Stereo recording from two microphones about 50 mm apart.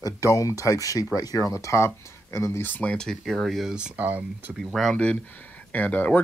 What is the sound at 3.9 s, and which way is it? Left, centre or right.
Speech, right.